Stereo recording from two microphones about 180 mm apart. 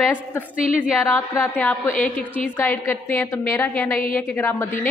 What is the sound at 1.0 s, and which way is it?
A woman's voice, 15° left (ahead or behind).